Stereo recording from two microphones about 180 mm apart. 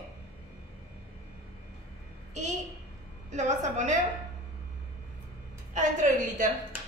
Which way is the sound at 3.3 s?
40° right (ahead or behind).